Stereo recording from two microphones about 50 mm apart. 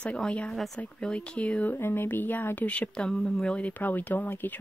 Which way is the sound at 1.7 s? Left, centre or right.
Left.